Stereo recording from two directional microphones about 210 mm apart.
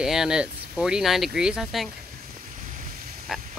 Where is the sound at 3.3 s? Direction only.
Centre (ahead or behind).